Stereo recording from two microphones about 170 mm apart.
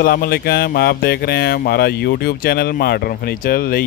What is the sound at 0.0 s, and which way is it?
Speech, 65° left (ahead or behind).